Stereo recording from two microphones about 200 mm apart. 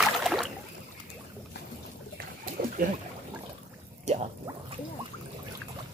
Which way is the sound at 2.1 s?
45° right (ahead or behind).